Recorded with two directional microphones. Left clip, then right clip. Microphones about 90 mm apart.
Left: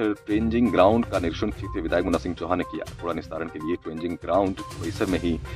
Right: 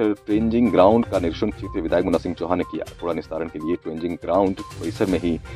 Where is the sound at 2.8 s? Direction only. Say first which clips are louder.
Right 4 dB; 5° right (ahead or behind).